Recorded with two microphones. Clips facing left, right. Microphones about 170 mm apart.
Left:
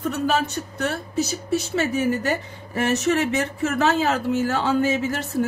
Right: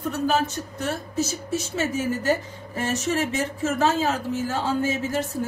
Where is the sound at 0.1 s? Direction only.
70° left (ahead or behind).